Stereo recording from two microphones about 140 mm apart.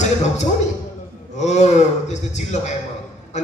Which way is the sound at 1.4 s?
55° left (ahead or behind).